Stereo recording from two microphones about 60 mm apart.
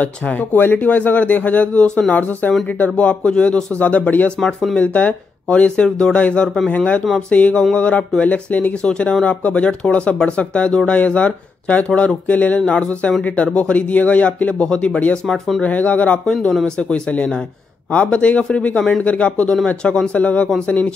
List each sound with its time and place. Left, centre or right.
0.0 s speech: left
4.4 s speech: centre
4.7 s speech: left
15.2 s speech: centre
15.6 s speech: left
16.3 s speech: centre